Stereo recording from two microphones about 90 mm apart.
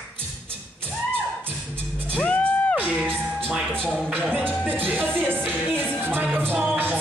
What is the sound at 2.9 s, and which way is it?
Music, 15° right (ahead or behind).